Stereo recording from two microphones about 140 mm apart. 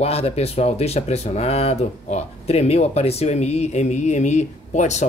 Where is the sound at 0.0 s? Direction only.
45° left (ahead or behind).